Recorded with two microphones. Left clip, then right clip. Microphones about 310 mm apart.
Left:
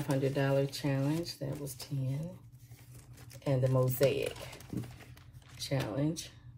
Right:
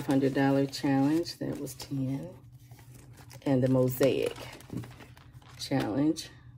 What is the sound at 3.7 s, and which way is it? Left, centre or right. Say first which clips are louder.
Speech: right 5 dB; right.